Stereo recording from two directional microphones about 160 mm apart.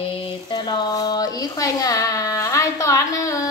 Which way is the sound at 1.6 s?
20° left (ahead or behind).